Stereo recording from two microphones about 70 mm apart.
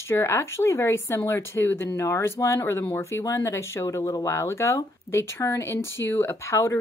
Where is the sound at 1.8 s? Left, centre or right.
Left.